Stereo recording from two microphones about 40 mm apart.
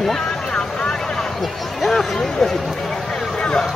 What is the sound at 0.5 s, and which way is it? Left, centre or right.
Vehicle, left.